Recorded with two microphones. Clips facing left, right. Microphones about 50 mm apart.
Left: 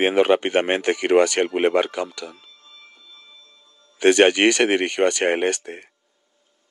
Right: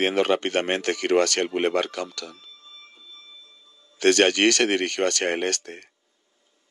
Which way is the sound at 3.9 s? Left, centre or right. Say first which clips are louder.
Left 4 dB; centre.